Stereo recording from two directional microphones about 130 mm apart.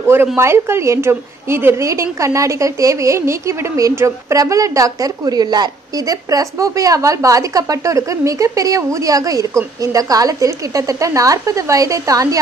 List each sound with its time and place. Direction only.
0.0 s a woman's voice: 20° right (ahead or behind)